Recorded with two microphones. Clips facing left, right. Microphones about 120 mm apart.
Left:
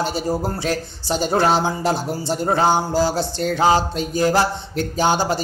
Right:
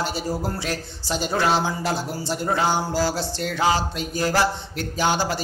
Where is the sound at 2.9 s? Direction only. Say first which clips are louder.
Left 4 dB; 20° left (ahead or behind).